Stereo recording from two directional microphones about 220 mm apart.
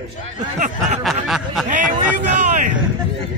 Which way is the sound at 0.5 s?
35° right (ahead or behind).